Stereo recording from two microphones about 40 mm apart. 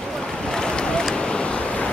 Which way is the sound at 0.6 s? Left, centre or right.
Left.